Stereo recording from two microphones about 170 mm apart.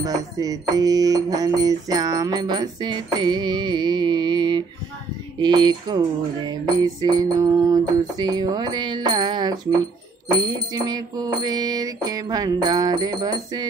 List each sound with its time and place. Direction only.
0.0 s music: 20° right (ahead or behind)